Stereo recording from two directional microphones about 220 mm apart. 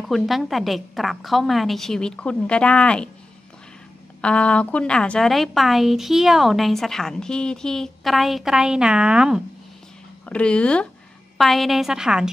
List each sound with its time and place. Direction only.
0.0 s a woman's voice: centre (ahead or behind)
4.2 s a woman's voice: 5° left (ahead or behind)